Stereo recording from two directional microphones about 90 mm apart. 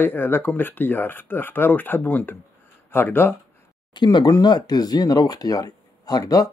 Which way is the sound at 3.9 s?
55° left (ahead or behind).